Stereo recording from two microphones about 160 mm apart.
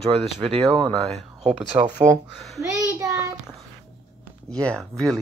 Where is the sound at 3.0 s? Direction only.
20° right (ahead or behind).